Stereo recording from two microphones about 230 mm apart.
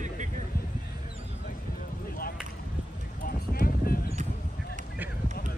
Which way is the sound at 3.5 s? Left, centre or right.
Left.